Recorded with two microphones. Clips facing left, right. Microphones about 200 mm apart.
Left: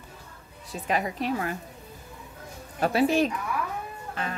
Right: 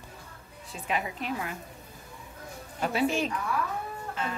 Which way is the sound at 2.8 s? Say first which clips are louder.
Left 5 dB; 40° left (ahead or behind).